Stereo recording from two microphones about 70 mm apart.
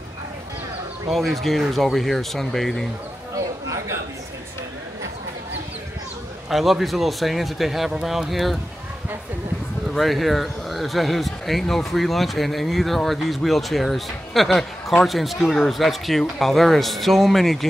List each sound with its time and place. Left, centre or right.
1.1 s speech: centre
3.3 s chatter: right
6.5 s speech: centre
9.9 s speech: centre